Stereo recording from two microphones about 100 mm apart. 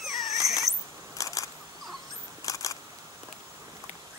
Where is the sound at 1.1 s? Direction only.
35° left (ahead or behind).